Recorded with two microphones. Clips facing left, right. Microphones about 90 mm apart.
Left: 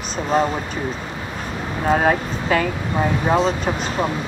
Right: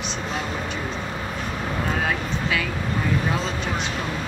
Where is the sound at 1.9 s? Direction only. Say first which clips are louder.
Left 12 dB; 40° left (ahead or behind).